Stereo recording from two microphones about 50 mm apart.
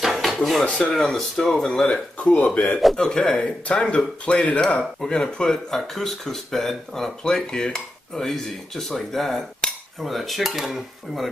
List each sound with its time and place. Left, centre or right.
0.0 s dishes: centre
0.7 s speech: centre
1.9 s speech: left
3.0 s speech: centre
3.3 s speech: left; by 7.1 s centre
7.2 s speech: centre
9.7 s cutlery: centre